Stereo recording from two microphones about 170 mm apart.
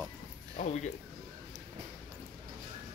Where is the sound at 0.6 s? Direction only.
55° left (ahead or behind).